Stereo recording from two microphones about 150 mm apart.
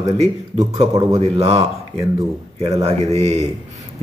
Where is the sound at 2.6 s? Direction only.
45° right (ahead or behind).